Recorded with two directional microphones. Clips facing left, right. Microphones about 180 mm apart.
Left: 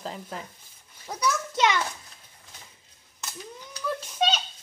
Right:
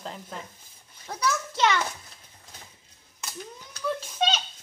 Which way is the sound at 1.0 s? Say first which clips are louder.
Left 1 dB; 10° left (ahead or behind).